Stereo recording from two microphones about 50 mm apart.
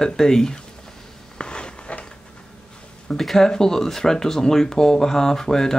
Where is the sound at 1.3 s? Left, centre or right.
Centre.